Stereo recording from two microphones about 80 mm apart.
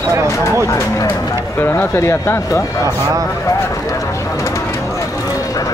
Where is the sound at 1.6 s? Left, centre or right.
Left.